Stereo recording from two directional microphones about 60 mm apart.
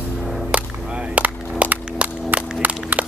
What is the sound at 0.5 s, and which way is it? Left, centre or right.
Whip, right.